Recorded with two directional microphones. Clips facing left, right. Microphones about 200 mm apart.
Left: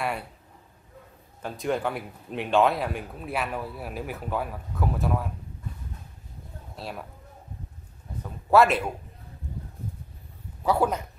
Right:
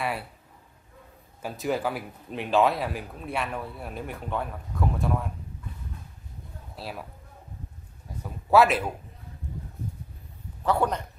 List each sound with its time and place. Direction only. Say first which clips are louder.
1.4 s speech: even; 5° right (ahead or behind)
6.7 s speech: even; centre (ahead or behind)
8.2 s speech: even; centre (ahead or behind)
10.6 s a man's voice: left 1 dB; 5° left (ahead or behind)